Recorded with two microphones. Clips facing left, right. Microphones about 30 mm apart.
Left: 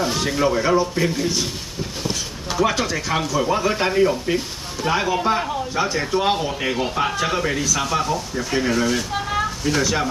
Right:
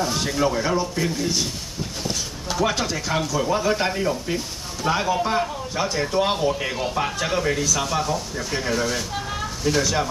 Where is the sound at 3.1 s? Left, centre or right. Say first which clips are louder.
Left 2 dB; centre.